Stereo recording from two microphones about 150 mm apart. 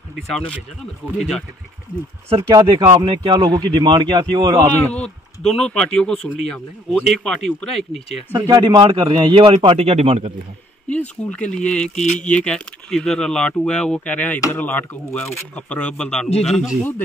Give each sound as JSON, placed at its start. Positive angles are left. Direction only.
{"t": 1.1, "sound": "speech", "side_deg": 0}
{"t": 2.5, "sound": "a man's voice", "side_deg": -30}
{"t": 4.9, "sound": "speech", "side_deg": 5}
{"t": 8.3, "sound": "a man's voice", "side_deg": -30}
{"t": 10.9, "sound": "speech", "side_deg": 10}
{"t": 11.9, "sound": "a sound", "side_deg": 50}
{"t": 12.3, "sound": "speech", "side_deg": 5}